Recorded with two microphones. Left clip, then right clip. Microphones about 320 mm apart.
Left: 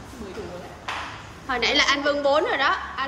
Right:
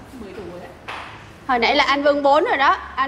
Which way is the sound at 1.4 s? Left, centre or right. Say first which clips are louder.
Right 4 dB; centre.